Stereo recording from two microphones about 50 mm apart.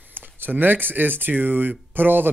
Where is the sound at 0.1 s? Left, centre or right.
Right.